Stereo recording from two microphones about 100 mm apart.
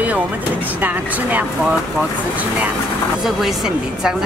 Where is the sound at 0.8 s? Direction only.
15° right (ahead or behind).